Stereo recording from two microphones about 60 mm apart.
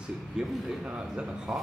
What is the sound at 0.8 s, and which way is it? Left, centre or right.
Speech, centre.